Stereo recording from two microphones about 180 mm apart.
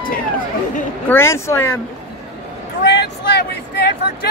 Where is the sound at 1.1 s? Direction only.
15° left (ahead or behind).